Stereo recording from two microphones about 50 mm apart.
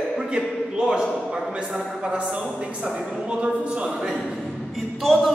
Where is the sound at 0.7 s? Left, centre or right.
Centre.